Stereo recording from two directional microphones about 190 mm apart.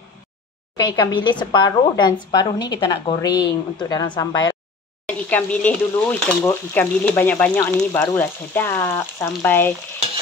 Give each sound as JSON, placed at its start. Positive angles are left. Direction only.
{"t": 0.7, "sound": "speech", "side_deg": 20}
{"t": 5.0, "sound": "speech", "side_deg": 5}